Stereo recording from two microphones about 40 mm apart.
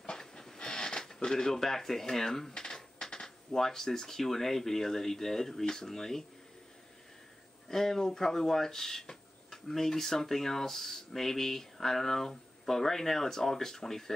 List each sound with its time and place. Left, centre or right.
0.0 s speech: centre
7.7 s speech: centre